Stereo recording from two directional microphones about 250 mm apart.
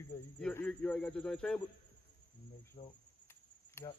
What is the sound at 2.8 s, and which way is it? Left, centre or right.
Cricket, centre.